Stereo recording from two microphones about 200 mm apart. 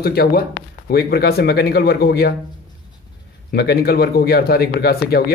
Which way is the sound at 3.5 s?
55° left (ahead or behind).